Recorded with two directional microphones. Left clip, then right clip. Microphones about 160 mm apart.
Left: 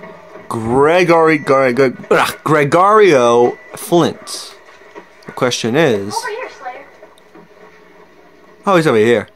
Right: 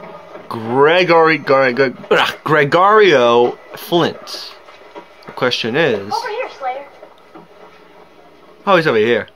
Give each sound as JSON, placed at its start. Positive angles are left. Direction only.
{"t": 0.5, "sound": "speech", "side_deg": 40}
{"t": 8.6, "sound": "speech", "side_deg": 40}